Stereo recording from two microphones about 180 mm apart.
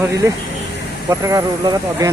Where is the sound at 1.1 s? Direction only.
20° right (ahead or behind).